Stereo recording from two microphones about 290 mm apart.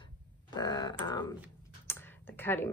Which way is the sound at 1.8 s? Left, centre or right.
Centre.